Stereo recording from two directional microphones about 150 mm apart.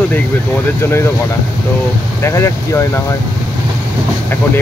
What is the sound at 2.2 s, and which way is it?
Speech, 20° left (ahead or behind).